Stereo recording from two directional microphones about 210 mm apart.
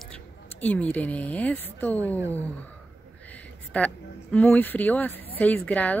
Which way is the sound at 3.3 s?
5° left (ahead or behind).